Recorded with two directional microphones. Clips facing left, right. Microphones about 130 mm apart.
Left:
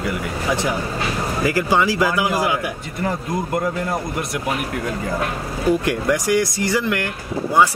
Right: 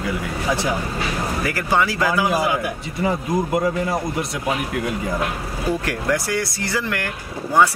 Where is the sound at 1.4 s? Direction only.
15° left (ahead or behind).